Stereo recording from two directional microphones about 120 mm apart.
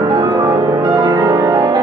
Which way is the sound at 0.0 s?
30° right (ahead or behind).